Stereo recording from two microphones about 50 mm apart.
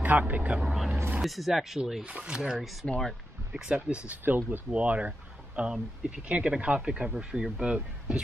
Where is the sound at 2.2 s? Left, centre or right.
Centre.